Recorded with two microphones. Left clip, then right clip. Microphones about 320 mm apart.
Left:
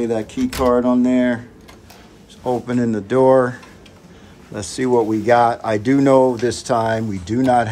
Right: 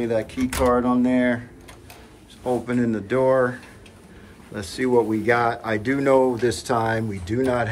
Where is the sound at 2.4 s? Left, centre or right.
Centre.